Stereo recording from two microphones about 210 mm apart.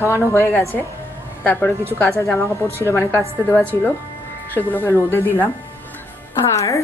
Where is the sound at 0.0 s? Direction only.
10° left (ahead or behind).